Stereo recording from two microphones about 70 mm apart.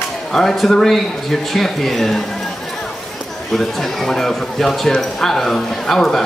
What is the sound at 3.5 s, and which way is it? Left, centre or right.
Speech, centre.